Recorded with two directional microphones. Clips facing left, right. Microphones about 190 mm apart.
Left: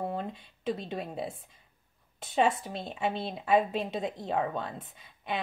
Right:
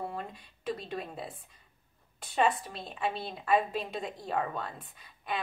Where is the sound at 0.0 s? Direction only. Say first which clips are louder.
Left 4 dB; 25° left (ahead or behind).